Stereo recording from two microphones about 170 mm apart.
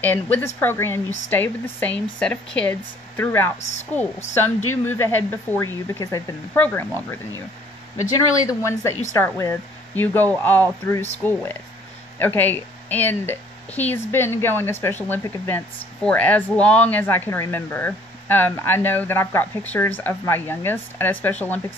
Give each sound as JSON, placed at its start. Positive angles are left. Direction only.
{"t": 0.0, "sound": "a woman's voice", "side_deg": 10}
{"t": 8.5, "sound": "a woman's voice", "side_deg": 15}